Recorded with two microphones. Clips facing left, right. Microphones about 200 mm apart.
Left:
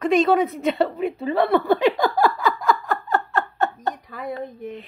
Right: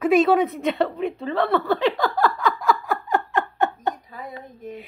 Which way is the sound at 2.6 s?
5° right (ahead or behind).